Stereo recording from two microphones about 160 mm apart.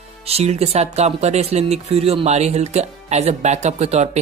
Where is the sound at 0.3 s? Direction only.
40° right (ahead or behind).